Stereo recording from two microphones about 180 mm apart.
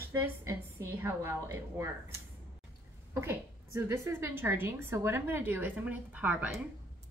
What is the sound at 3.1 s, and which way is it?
A woman's voice, 15° right (ahead or behind).